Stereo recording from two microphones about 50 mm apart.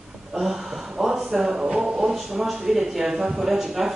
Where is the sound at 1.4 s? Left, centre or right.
Centre.